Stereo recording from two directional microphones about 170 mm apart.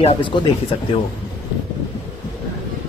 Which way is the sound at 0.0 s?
30° left (ahead or behind).